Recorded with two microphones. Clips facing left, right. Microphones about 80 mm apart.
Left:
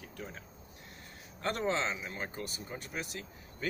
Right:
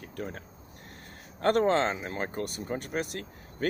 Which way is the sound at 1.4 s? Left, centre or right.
Right.